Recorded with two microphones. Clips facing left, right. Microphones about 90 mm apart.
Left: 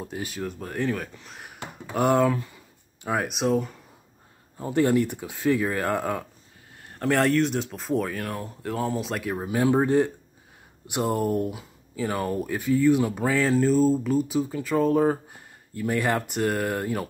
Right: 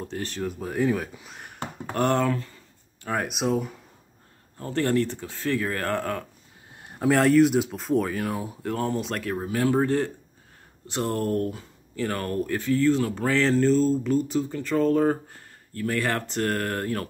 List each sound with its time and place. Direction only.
0.0 s speech: 10° left (ahead or behind)
2.0 s a sound: 5° left (ahead or behind)
3.2 s speech: centre (ahead or behind)
4.6 s speech: 15° left (ahead or behind)
6.9 s speech: 5° right (ahead or behind)
9.2 s speech: 15° left (ahead or behind)